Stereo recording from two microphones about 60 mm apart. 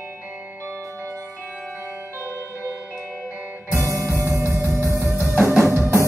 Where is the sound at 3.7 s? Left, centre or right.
Right.